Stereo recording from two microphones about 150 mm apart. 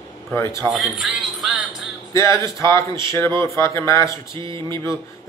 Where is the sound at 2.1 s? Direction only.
20° left (ahead or behind).